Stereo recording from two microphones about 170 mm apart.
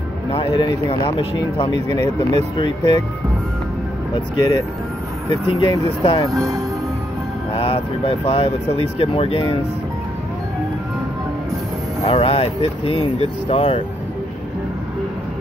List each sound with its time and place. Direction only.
0.5 s speech: 30° left (ahead or behind)
1.9 s speech: 40° right (ahead or behind)
2.5 s speech: 30° left (ahead or behind)
4.4 s speech: 25° left (ahead or behind)
6.3 s speech: 20° right (ahead or behind)
7.5 s speech: 30° left (ahead or behind)
12.0 s speech: 35° left (ahead or behind)